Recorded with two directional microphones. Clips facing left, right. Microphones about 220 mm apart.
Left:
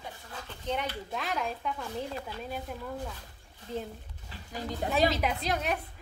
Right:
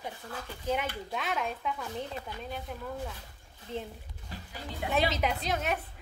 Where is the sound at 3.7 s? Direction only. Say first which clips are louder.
Left 1 dB; 35° left (ahead or behind).